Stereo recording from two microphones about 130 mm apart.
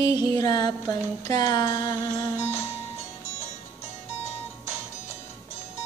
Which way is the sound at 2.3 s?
20° left (ahead or behind).